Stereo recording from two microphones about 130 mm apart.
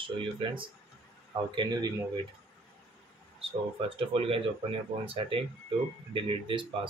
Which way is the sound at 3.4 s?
45° right (ahead or behind).